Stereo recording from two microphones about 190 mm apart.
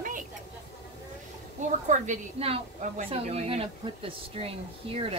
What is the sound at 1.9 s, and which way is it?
A woman's voice, 35° right (ahead or behind).